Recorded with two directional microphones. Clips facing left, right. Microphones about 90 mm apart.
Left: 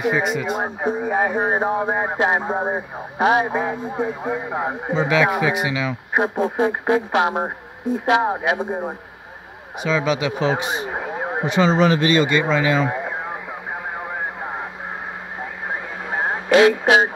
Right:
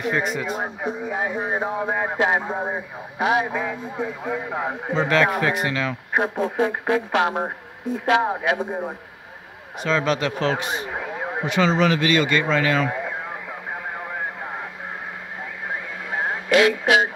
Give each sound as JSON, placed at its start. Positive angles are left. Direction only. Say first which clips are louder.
{"t": 0.1, "sound": "speech", "louder": "left 3 dB", "side_deg": 5}
{"t": 0.7, "sound": "speech", "louder": "left 6 dB", "side_deg": 40}
{"t": 1.7, "sound": "speech", "louder": "left 3 dB", "side_deg": 25}
{"t": 9.8, "sound": "speech", "louder": "left 1 dB", "side_deg": 5}
{"t": 13.9, "sound": "radio", "louder": "left 2 dB", "side_deg": 20}
{"t": 15.7, "sound": "radio", "louder": "left 2 dB", "side_deg": 30}